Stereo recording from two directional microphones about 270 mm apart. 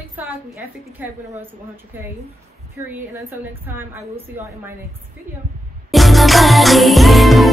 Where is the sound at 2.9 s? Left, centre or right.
Centre.